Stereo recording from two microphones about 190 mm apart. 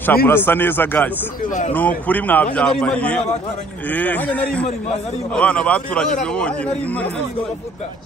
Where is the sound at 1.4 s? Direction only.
40° left (ahead or behind).